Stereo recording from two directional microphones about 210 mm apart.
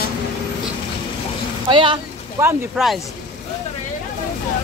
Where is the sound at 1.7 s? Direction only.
25° right (ahead or behind).